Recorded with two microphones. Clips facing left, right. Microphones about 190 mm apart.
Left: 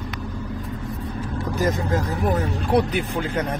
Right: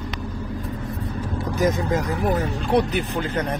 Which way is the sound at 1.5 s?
15° right (ahead or behind).